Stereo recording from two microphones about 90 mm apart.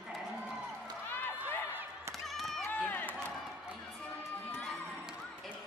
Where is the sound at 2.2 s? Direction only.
Centre (ahead or behind).